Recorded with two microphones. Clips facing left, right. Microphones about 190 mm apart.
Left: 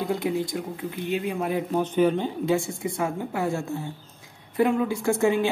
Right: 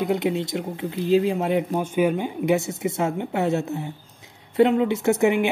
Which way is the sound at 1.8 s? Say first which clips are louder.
Even; 10° right (ahead or behind).